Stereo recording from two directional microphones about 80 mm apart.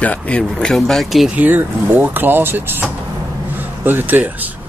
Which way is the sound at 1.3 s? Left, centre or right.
Right.